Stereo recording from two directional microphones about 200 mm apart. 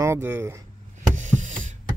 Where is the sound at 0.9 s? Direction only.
35° right (ahead or behind).